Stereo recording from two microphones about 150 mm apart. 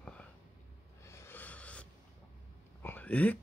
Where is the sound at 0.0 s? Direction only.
10° left (ahead or behind).